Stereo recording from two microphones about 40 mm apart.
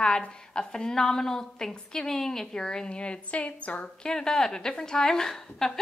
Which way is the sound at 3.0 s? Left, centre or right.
Left.